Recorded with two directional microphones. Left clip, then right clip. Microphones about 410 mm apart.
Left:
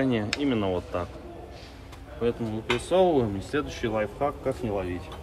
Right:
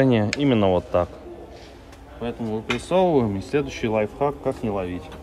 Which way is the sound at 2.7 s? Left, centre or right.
Centre.